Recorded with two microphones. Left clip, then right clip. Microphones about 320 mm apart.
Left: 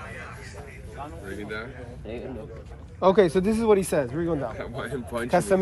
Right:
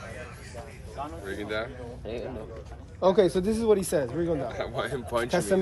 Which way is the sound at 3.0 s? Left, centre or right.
Centre.